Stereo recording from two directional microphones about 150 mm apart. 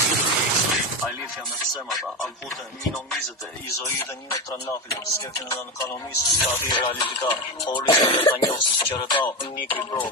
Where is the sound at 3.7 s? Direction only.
20° left (ahead or behind).